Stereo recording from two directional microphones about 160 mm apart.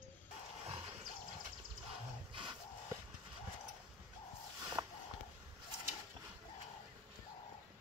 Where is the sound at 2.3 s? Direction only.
30° right (ahead or behind).